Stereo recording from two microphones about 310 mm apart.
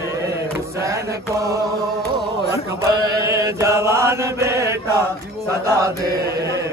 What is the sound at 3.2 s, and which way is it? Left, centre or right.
Chant, centre.